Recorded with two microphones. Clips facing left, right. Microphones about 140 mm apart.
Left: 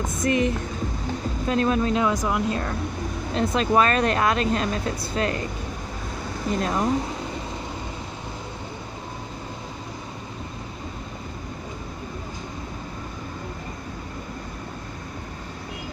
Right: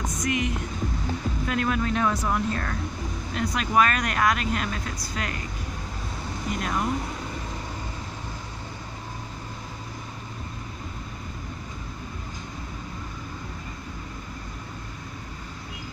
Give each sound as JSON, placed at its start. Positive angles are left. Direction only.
{"t": 0.1, "sound": "speech", "side_deg": 30}
{"t": 6.5, "sound": "speech", "side_deg": 30}